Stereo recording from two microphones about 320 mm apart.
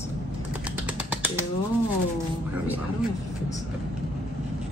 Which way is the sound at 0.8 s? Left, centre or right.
Centre.